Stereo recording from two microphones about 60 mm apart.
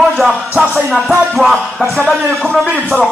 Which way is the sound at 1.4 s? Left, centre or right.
Centre.